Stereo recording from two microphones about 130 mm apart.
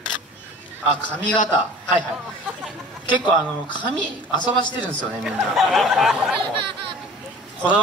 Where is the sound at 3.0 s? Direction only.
35° left (ahead or behind).